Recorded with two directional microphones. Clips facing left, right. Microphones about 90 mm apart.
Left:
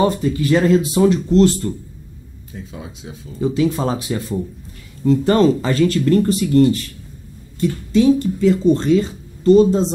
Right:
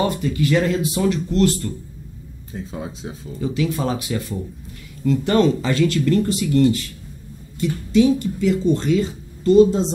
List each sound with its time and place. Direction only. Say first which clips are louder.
0.0 s speech: left 3 dB; 30° left (ahead or behind)
2.7 s speech: right 5 dB; 35° right (ahead or behind)
3.3 s speech: left 5 dB; 30° left (ahead or behind)
7.9 s speech: left 2 dB; 40° left (ahead or behind)